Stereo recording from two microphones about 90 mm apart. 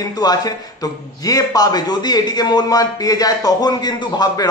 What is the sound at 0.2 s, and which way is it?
A man's voice, 50° left (ahead or behind).